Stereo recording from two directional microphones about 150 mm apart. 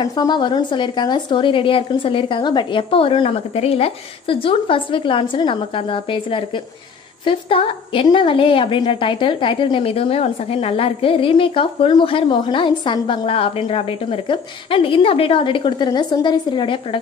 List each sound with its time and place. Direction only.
0.0 s a woman's voice: 25° left (ahead or behind)